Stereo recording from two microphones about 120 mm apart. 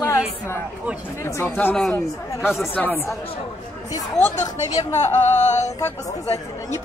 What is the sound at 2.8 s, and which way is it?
Speech, 5° left (ahead or behind).